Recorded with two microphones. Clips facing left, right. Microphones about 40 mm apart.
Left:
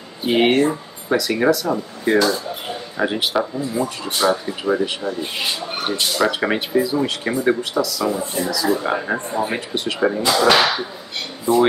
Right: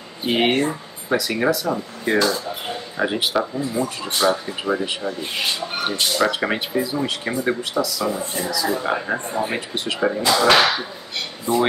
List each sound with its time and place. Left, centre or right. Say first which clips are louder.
0.2 s speech: left 3 dB; centre